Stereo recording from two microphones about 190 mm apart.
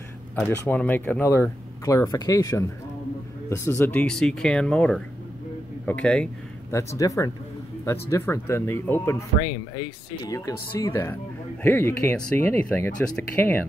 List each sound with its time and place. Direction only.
0.4 s speech: 10° left (ahead or behind)
6.7 s speech: 15° left (ahead or behind)
10.2 s speech: 20° left (ahead or behind)